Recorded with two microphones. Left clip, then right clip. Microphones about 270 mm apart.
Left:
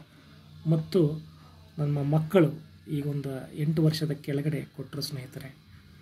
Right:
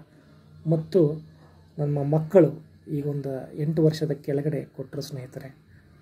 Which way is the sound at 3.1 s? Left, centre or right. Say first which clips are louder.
Right 4 dB; centre.